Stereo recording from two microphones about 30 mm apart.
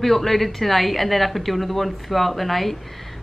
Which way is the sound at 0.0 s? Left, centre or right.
Centre.